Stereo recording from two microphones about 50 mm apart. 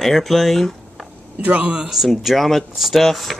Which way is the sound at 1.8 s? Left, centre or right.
Centre.